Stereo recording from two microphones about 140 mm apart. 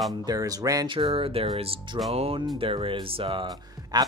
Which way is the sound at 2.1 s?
45° right (ahead or behind).